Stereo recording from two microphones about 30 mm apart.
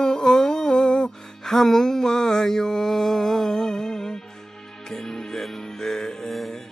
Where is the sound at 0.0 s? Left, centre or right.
Left.